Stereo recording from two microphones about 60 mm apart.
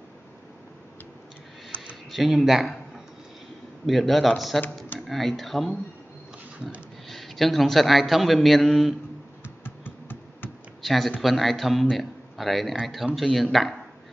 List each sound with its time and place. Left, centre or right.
2.0 s a man's voice: centre
3.8 s a man's voice: centre
7.1 s a man's voice: centre
9.6 s a sound: left
10.8 s a man's voice: centre